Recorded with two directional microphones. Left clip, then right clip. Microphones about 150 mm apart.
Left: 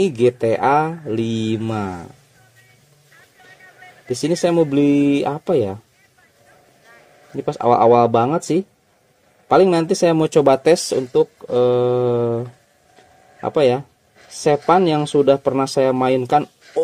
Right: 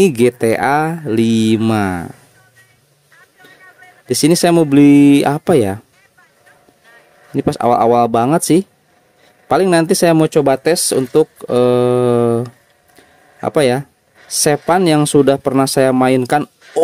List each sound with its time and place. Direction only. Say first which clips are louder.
0.0 s speech: right 4 dB; 40° right (ahead or behind)
4.1 s speech: right 6 dB; 40° right (ahead or behind)
7.3 s speech: right 3 dB; 35° right (ahead or behind)
10.3 s speech: even; 15° right (ahead or behind)
11.1 s speech: right 3 dB; 40° right (ahead or behind)